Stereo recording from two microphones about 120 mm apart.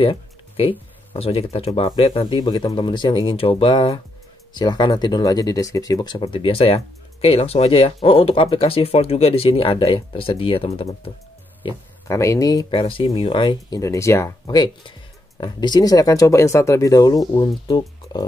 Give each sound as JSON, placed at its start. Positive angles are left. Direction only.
{"t": 0.0, "sound": "speech", "side_deg": 45}
{"t": 12.1, "sound": "speech", "side_deg": 25}
{"t": 12.8, "sound": "speech", "side_deg": 45}
{"t": 13.7, "sound": "speech", "side_deg": 25}
{"t": 14.4, "sound": "speech", "side_deg": 35}